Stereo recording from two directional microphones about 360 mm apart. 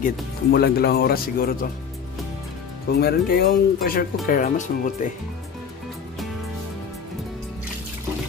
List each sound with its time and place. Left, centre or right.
0.0 s speech: left
2.9 s speech: left